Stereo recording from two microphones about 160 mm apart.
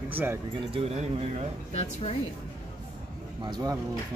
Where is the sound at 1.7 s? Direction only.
40° left (ahead or behind).